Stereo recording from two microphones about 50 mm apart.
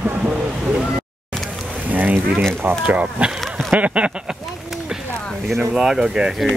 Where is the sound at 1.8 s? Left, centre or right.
Right.